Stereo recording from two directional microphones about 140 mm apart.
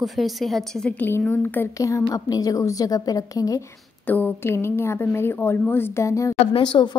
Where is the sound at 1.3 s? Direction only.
15° left (ahead or behind).